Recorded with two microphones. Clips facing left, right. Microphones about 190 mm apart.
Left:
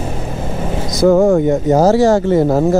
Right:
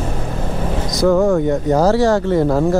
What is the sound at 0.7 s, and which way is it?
Vehicle, 10° left (ahead or behind).